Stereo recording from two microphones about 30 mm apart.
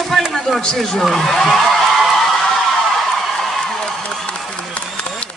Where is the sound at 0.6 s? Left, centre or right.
Left.